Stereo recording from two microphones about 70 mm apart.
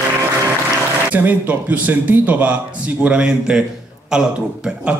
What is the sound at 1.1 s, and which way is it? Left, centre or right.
A man's voice, right.